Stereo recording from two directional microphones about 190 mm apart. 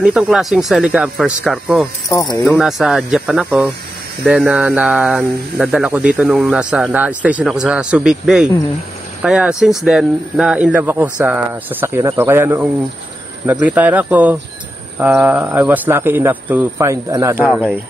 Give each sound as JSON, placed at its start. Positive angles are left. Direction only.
{"t": 0.0, "sound": "speech", "side_deg": -5}
{"t": 2.0, "sound": "speech", "side_deg": 15}
{"t": 2.4, "sound": "speech", "side_deg": 0}
{"t": 17.4, "sound": "speech", "side_deg": 0}